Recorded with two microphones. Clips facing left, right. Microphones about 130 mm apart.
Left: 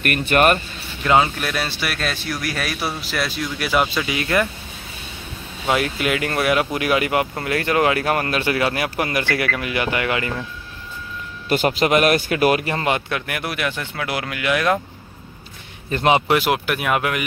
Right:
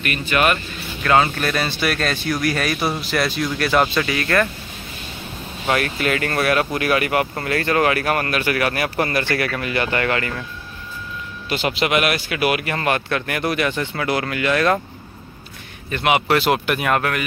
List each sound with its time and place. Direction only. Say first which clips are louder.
0.0 s speech: left 3 dB; 55° left (ahead or behind)
1.0 s speech: even; 15° left (ahead or behind)
1.4 s speech: right 3 dB; 5° left (ahead or behind)
5.7 s speech: even; 15° left (ahead or behind)
11.4 s speech: left 3 dB; 45° left (ahead or behind)
12.7 s speech: right 1 dB; 20° left (ahead or behind)
13.3 s speech: right 6 dB; 5° left (ahead or behind)
15.9 s speech: left 2 dB; 30° left (ahead or behind)
16.3 s speech: right 1 dB; 10° left (ahead or behind)